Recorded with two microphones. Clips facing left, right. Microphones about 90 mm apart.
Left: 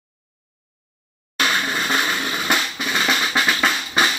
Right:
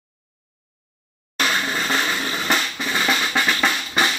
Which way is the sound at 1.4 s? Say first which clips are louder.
Left 1 dB; 10° left (ahead or behind).